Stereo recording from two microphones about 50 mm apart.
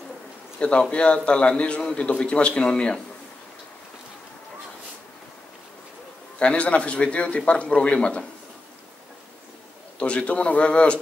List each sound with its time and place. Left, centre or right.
0.6 s a man's voice: left
6.4 s a man's voice: left
9.9 s a man's voice: left